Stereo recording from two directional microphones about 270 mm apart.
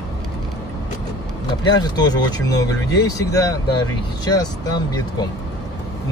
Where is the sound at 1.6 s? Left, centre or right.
Centre.